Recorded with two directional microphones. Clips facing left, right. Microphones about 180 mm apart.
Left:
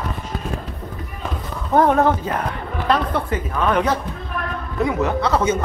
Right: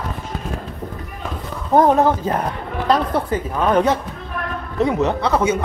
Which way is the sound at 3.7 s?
25° right (ahead or behind).